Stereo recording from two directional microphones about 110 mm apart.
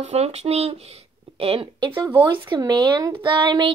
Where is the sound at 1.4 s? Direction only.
55° right (ahead or behind).